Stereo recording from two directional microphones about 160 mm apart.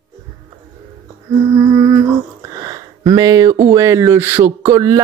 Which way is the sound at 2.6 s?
25° right (ahead or behind).